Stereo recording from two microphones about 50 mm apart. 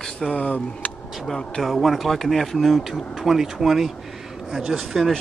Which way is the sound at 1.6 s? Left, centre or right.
Centre.